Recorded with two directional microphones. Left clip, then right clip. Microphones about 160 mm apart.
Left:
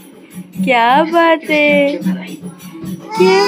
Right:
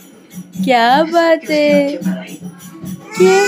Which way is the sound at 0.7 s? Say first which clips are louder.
Even; 30° right (ahead or behind).